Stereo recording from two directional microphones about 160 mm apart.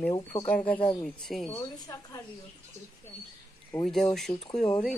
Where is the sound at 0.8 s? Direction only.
30° left (ahead or behind).